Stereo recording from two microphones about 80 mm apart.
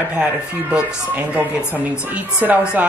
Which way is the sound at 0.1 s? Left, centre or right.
Centre.